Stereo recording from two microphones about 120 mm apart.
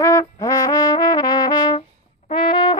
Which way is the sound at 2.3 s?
45° left (ahead or behind).